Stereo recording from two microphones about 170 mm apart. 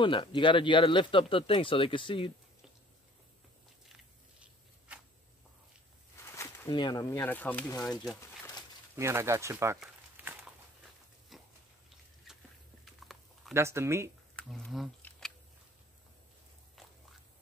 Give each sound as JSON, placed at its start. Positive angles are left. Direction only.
{"t": 0.0, "sound": "speech", "side_deg": 30}
{"t": 3.9, "sound": "biting", "side_deg": -5}
{"t": 6.1, "sound": "a sound", "side_deg": 15}
{"t": 6.7, "sound": "speech", "side_deg": 25}
{"t": 7.6, "sound": "speech", "side_deg": 20}
{"t": 8.9, "sound": "speech", "side_deg": -15}
{"t": 9.8, "sound": "a sound", "side_deg": -5}
{"t": 11.3, "sound": "pig", "side_deg": 0}
{"t": 12.3, "sound": "a sound", "side_deg": -5}
{"t": 12.8, "sound": "dog", "side_deg": 0}
{"t": 13.5, "sound": "speech", "side_deg": -15}
{"t": 14.3, "sound": "speech", "side_deg": 5}
{"t": 15.0, "sound": "camera", "side_deg": 5}